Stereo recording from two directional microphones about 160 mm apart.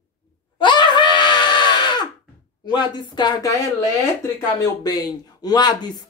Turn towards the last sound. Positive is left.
turn(degrees=25)  # may be behind; listen again after turning